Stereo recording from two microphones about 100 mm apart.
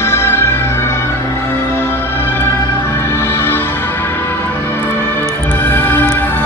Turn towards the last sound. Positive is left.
turn(degrees=20)  # may be behind; listen again after turning